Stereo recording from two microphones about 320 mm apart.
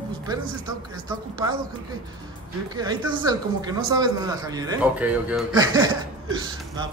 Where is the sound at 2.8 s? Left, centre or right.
Centre.